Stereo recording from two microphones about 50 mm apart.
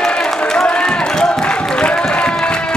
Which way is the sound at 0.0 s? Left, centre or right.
Centre.